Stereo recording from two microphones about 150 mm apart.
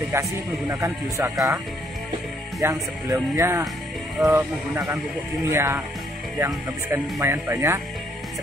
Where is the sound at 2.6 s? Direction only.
20° right (ahead or behind).